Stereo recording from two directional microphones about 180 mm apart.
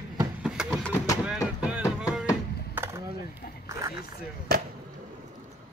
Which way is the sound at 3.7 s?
20° right (ahead or behind).